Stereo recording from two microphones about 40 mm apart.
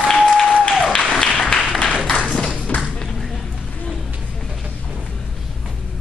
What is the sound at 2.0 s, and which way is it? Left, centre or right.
Tap, left.